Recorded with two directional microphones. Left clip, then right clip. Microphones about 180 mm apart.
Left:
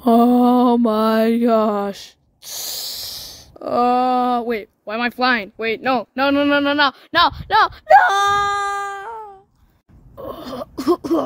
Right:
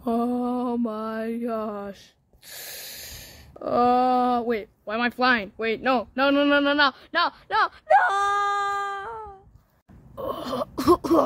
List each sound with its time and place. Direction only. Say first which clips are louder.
0.0 s mantra: left 12 dB; 45° left (ahead or behind)
0.8 s speech: left 13 dB; 50° left (ahead or behind); by 9.3 s 30° left (ahead or behind)
10.1 s a sound: right 1 dB; 10° left (ahead or behind)